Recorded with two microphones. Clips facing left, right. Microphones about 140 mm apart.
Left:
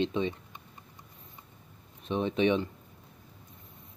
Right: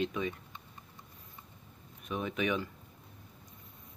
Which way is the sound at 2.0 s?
30° left (ahead or behind).